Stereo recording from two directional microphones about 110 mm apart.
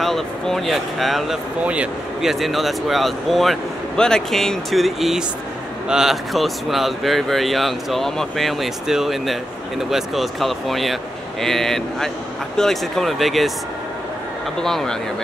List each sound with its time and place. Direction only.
0.0 s speech: centre (ahead or behind)
1.6 s a man's voice: 10° right (ahead or behind)
2.3 s speech: centre (ahead or behind)
14.6 s speech: 5° left (ahead or behind)